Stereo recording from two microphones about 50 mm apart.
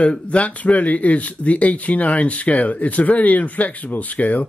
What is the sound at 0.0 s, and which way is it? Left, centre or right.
Speech, left.